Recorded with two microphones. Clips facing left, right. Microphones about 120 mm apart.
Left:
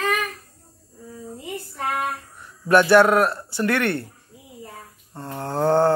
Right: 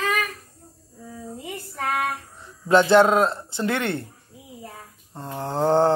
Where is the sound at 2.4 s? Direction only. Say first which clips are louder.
Left 1 dB; 20° right (ahead or behind).